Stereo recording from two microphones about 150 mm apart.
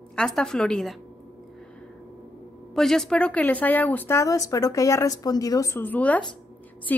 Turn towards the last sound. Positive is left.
turn(degrees=10)  # may be behind; listen again after turning